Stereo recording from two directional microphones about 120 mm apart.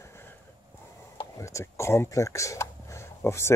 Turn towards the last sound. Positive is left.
turn(degrees=20)  # may be behind; listen again after turning